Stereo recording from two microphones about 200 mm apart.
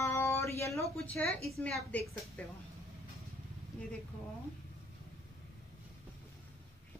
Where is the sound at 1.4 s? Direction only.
Centre (ahead or behind).